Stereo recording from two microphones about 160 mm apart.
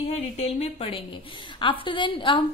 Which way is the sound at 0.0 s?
40° left (ahead or behind).